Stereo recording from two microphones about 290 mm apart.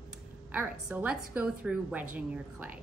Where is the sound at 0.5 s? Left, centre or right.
Centre.